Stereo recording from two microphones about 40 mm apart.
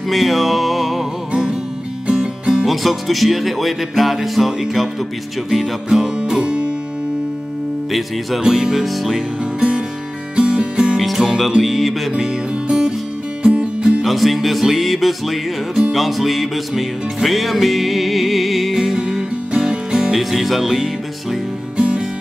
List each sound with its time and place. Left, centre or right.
0.1 s music: centre
1.3 s music: right
2.6 s music: centre
5.9 s music: centre
8.4 s music: centre
8.8 s music: centre
9.6 s music: right
11.1 s music: centre
12.6 s music: right
14.0 s music: centre
18.8 s music: centre
20.2 s music: centre
21.7 s music: right